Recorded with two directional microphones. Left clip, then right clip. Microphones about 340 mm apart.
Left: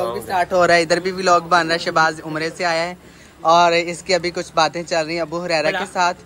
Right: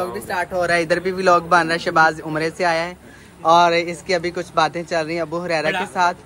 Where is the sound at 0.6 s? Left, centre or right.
Centre.